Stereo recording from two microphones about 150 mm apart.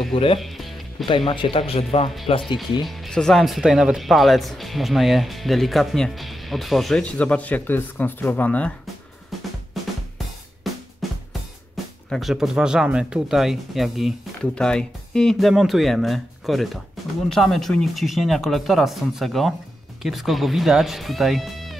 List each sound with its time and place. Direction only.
0.1 s speech: 35° left (ahead or behind)
0.4 s music: centre (ahead or behind)
1.0 s speech: 35° left (ahead or behind)
2.8 s speech: centre (ahead or behind)
9.8 s drum kit: centre (ahead or behind)
11.7 s speech: centre (ahead or behind)